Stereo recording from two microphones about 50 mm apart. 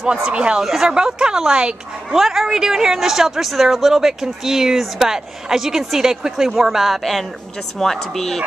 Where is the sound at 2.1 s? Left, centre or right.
Centre.